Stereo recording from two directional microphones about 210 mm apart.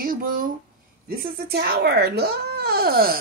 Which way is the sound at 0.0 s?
40° right (ahead or behind).